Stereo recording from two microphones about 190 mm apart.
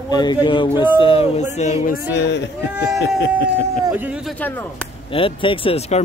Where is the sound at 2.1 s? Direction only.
65° left (ahead or behind).